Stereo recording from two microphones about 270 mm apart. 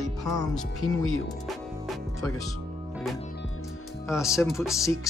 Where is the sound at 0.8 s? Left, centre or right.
Left.